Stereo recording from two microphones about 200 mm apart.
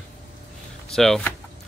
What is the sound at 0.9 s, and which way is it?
Speech, centre (ahead or behind).